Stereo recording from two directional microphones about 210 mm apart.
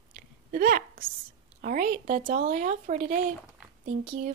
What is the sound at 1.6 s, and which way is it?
Speech, 40° right (ahead or behind).